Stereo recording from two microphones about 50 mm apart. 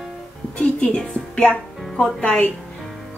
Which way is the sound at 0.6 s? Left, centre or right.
Left.